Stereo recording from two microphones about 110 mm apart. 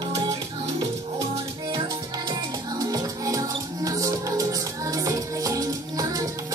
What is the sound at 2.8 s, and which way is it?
Music, 35° right (ahead or behind).